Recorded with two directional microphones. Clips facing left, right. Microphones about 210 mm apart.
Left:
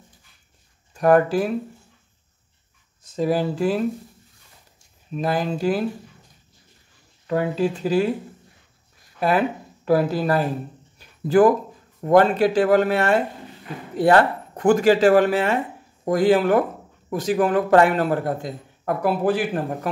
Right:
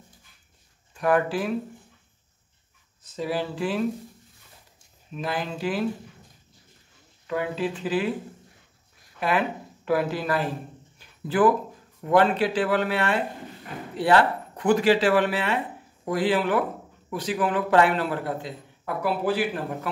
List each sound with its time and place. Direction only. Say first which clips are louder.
0.9 s speech: left 6 dB; 40° left (ahead or behind)
3.2 s a man's voice: left 6 dB; 45° left (ahead or behind)
5.1 s speech: left 6 dB; 40° left (ahead or behind)
7.2 s speech: left 5 dB; 40° left (ahead or behind)
9.2 s speech: left 5 dB; 40° left (ahead or behind)
11.0 s a sound: left 6 dB; 40° left (ahead or behind)
12.0 s a man's voice: left 5 dB; 45° left (ahead or behind)